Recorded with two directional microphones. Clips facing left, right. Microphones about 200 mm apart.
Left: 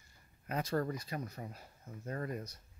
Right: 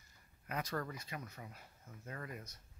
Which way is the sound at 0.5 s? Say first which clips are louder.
Left 6 dB; 30° left (ahead or behind).